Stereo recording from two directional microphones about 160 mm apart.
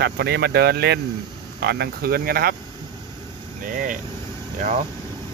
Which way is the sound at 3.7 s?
55° right (ahead or behind).